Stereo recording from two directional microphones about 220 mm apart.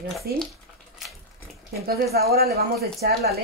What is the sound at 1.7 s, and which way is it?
Speech, 45° right (ahead or behind).